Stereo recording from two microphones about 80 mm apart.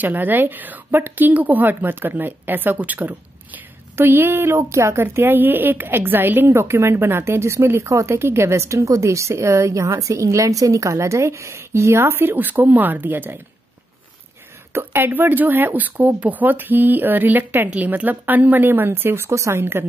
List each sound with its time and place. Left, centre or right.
0.0 s a woman's voice: right
14.7 s speech: right